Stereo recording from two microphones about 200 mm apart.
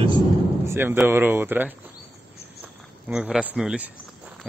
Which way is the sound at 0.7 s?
10° right (ahead or behind).